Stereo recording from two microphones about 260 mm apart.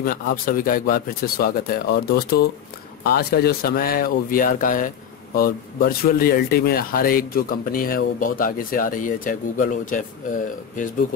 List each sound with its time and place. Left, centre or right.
0.0 s speech: left